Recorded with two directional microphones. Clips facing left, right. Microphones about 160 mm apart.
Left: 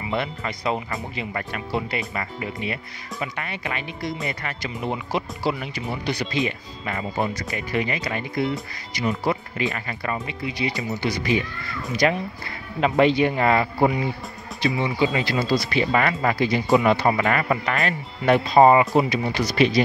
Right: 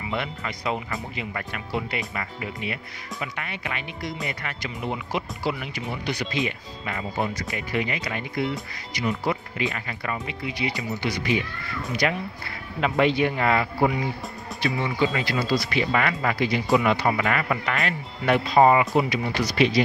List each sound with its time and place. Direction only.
0.1 s speech: 35° left (ahead or behind)
14.6 s speech: 20° left (ahead or behind)
19.6 s speech: 40° left (ahead or behind)